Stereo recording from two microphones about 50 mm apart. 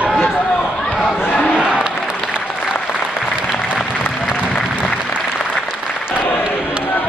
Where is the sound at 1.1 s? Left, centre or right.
Left.